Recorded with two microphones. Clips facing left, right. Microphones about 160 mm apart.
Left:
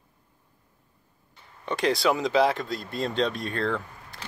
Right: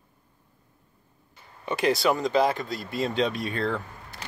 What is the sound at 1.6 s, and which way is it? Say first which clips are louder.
Speech: right 1 dB; 5° right (ahead or behind).